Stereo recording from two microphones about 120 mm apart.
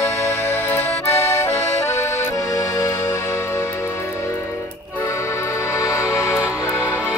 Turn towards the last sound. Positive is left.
turn(degrees=25)  # may be behind; listen again after turning